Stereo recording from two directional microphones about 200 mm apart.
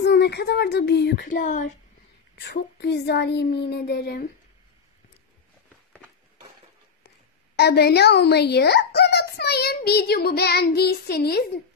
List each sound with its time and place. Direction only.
0.0 s child singing: 55° left (ahead or behind); by 1.7 s 40° left (ahead or behind)
2.3 s a woman's voice: 55° left (ahead or behind)
7.5 s a child's voice: 55° left (ahead or behind)